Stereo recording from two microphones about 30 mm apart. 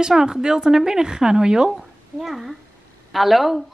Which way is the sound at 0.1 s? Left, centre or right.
Right.